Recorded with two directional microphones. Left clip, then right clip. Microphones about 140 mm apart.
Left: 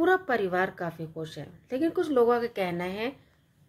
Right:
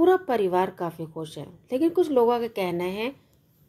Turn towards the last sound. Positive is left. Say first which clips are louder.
# right 3 dB
turn(degrees=-15)  # may be behind; listen again after turning